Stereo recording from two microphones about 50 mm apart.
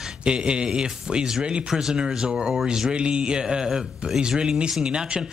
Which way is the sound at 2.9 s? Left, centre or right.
Right.